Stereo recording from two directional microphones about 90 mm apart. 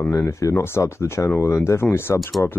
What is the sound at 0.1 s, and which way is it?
Speech, 35° left (ahead or behind).